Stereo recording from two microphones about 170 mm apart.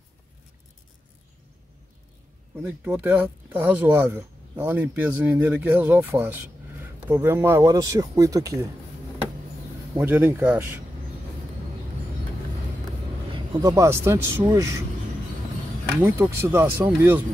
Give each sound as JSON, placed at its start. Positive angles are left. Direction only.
{"t": 2.5, "sound": "speech", "side_deg": -15}
{"t": 9.9, "sound": "speech", "side_deg": -15}
{"t": 13.3, "sound": "speech", "side_deg": -25}
{"t": 16.0, "sound": "speech", "side_deg": -15}